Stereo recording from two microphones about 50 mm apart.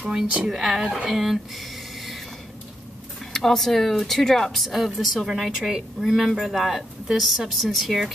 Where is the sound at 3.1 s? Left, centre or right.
Centre.